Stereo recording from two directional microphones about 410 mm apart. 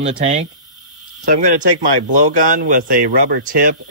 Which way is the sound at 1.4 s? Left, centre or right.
Right.